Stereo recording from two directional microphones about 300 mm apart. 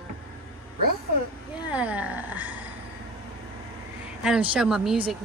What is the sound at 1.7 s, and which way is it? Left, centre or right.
Speech, centre.